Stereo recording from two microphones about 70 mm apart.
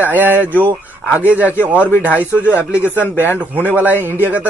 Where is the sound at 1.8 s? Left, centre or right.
Left.